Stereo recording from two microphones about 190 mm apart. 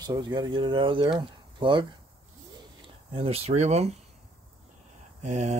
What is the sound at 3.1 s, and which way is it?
Mantra, 30° right (ahead or behind).